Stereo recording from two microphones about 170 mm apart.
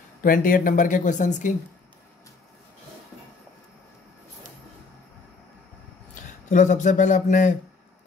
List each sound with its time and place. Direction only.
0.2 s speech: 55° left (ahead or behind)
6.2 s speech: 45° left (ahead or behind)